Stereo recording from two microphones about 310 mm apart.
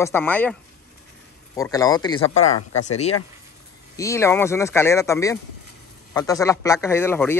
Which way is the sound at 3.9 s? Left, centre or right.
Centre.